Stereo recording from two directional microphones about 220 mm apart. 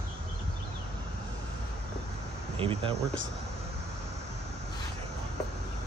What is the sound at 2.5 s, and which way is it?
Speech, 25° right (ahead or behind).